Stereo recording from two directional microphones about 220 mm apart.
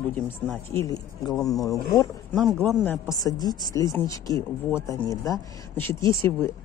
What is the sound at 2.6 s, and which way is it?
Speech, 5° left (ahead or behind).